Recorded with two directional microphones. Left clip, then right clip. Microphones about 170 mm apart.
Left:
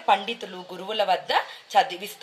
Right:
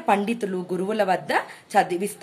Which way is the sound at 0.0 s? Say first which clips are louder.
Even; 20° right (ahead or behind).